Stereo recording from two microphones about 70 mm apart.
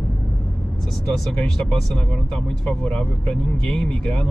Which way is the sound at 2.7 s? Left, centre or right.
Centre.